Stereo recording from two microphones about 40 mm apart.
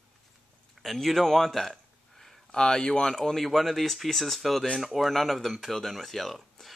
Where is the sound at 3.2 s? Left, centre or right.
Centre.